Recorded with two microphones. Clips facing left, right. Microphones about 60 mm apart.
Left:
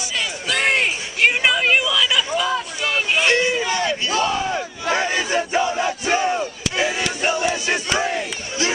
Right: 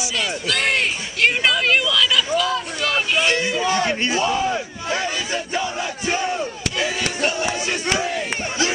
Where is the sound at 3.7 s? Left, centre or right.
Right.